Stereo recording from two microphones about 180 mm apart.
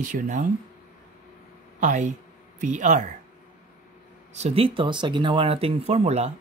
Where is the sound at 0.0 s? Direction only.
45° right (ahead or behind).